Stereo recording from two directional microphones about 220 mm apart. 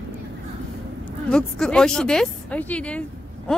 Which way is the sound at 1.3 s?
5° left (ahead or behind).